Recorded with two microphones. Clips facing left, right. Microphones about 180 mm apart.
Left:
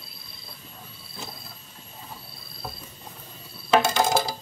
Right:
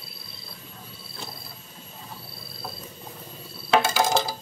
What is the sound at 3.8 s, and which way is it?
Coin, centre (ahead or behind).